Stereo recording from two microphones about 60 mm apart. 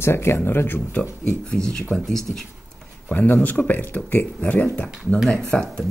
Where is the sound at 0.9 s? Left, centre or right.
Centre.